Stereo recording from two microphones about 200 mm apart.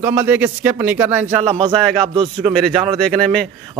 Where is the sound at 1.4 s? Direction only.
30° right (ahead or behind).